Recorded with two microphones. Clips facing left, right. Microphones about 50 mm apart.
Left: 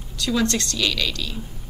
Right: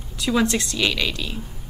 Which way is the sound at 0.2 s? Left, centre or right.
Centre.